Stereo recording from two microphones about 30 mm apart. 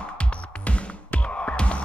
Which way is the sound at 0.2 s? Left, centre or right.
Left.